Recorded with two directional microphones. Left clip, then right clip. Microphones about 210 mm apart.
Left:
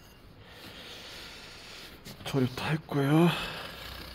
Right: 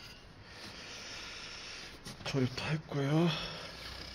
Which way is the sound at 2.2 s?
30° left (ahead or behind).